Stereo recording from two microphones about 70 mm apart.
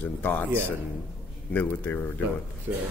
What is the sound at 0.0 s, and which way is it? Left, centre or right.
Speech, left.